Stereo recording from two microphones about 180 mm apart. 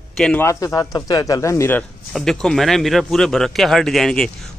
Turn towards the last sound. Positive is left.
turn(degrees=5)  # may be behind; listen again after turning